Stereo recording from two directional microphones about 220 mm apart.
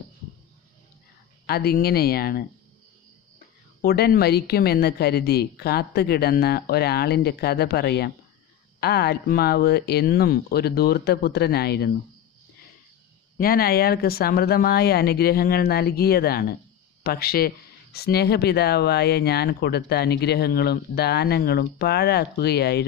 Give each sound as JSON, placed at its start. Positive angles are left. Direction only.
{"t": 1.4, "sound": "speech", "side_deg": 45}
{"t": 3.8, "sound": "speech", "side_deg": 45}
{"t": 13.4, "sound": "speech", "side_deg": 40}